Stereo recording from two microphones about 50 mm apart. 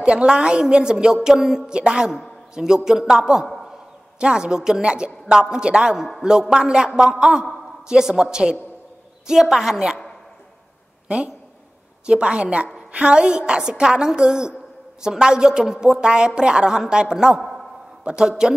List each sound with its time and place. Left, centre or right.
0.0 s a woman's voice: right
11.1 s a woman's voice: right
17.4 s a sound: centre
18.0 s a woman's voice: centre